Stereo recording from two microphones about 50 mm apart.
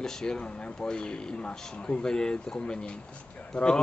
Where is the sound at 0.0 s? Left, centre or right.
Centre.